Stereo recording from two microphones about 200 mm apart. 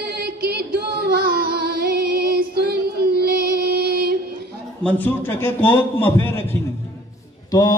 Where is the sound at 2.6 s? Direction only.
50° right (ahead or behind).